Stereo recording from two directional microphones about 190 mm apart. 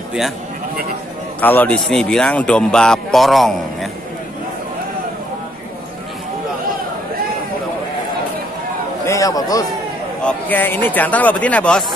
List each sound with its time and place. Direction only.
1.4 s speech: 10° left (ahead or behind)
9.0 s a man's voice: 15° left (ahead or behind)